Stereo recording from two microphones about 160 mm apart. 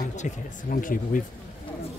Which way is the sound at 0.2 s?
60° left (ahead or behind).